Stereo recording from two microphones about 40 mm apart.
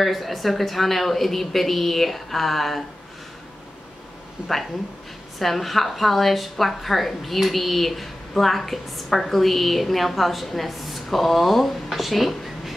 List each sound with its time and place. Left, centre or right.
0.0 s a woman's voice: centre
4.4 s speech: right
5.4 s a woman's voice: centre